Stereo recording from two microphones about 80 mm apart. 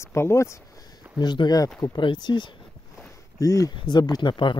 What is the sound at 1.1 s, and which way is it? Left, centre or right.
Speech, left.